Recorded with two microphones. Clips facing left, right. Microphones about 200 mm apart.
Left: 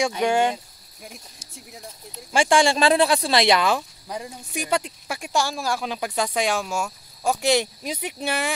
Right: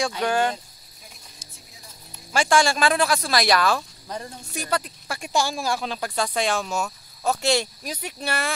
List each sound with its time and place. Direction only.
0.0 s speech: 15° left (ahead or behind)
2.3 s speech: 25° left (ahead or behind)
4.1 s speech: 10° left (ahead or behind)
5.2 s speech: 5° left (ahead or behind)